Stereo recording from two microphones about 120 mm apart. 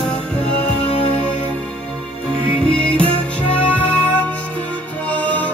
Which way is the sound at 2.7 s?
10° left (ahead or behind).